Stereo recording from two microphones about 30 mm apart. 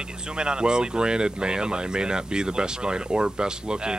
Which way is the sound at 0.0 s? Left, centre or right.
Right.